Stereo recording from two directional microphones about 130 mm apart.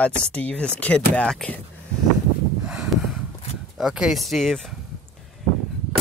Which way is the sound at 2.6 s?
5° right (ahead or behind).